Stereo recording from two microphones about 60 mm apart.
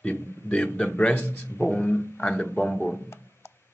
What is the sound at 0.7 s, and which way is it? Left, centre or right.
Speech, left.